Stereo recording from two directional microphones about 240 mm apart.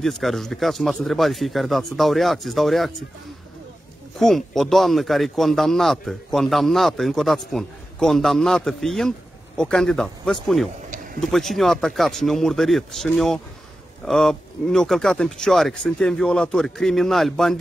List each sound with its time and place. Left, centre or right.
0.0 s a man's voice: centre
4.2 s a man's voice: centre